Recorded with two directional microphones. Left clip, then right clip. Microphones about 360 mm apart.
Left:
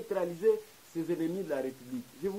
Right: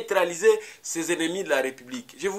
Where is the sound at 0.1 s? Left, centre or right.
Centre.